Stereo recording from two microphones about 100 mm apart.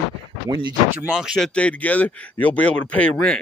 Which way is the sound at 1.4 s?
10° left (ahead or behind).